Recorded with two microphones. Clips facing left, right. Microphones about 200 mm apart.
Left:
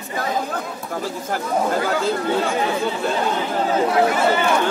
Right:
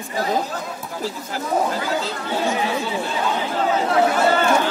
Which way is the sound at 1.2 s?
50° left (ahead or behind).